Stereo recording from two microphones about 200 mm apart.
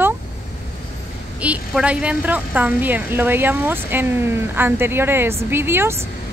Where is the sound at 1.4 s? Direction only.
5° right (ahead or behind).